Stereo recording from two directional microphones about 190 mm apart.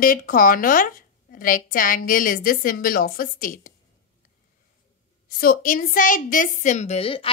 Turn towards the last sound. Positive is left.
turn(degrees=30)  # may be behind; listen again after turning